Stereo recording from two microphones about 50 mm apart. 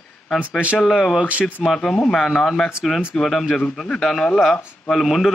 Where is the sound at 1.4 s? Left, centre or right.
Centre.